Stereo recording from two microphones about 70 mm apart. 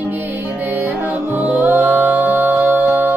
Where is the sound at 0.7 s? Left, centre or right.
Right.